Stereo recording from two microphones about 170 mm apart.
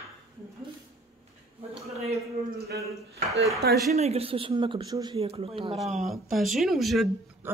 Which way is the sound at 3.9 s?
40° right (ahead or behind).